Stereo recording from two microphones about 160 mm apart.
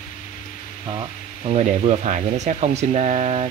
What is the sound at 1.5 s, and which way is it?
Speech, 50° right (ahead or behind).